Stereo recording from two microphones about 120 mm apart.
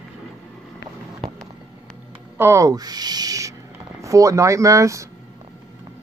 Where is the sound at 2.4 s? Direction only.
25° right (ahead or behind).